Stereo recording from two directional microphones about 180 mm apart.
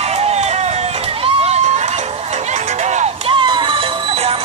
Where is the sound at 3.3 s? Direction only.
25° right (ahead or behind).